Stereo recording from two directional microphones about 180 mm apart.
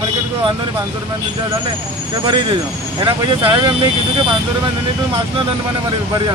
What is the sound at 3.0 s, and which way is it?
Speech, 25° right (ahead or behind).